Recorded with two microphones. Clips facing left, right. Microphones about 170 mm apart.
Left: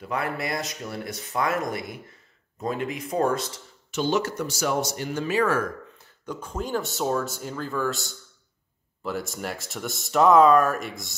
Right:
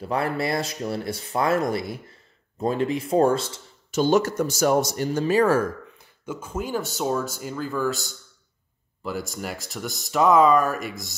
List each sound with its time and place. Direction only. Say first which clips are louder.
0.0 s speech: right 4 dB; 30° right (ahead or behind)
4.0 s speech: right 5 dB; 45° right (ahead or behind)
5.9 s speech: right 1 dB; 5° right (ahead or behind)